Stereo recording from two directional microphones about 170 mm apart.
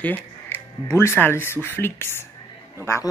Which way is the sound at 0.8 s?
15° left (ahead or behind).